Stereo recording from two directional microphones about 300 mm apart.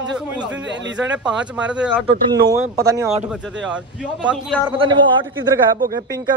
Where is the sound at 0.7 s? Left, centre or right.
Right.